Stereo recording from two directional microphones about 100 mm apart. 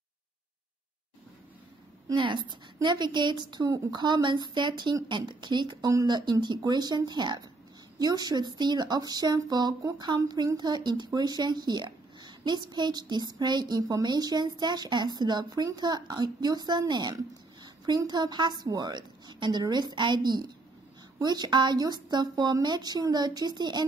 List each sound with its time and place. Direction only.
2.0 s speech: 50° right (ahead or behind)